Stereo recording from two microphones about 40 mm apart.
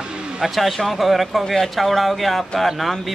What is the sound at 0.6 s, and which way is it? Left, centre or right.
A man's voice, centre.